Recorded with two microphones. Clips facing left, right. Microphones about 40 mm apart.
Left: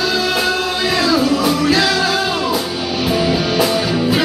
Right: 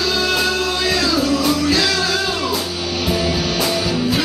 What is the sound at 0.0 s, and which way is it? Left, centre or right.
Music, centre.